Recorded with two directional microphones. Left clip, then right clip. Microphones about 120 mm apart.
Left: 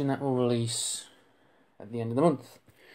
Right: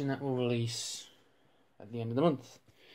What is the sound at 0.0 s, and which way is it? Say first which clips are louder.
Speech: left 6 dB; 25° left (ahead or behind).